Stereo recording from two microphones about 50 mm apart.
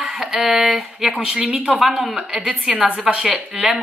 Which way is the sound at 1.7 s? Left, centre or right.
Centre.